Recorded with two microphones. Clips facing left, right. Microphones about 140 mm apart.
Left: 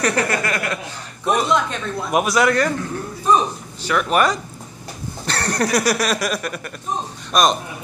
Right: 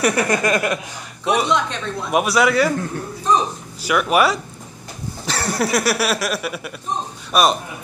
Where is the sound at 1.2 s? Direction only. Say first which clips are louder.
Even; 5° right (ahead or behind).